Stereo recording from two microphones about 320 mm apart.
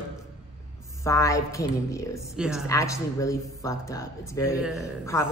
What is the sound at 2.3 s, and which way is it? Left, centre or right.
Speech, centre.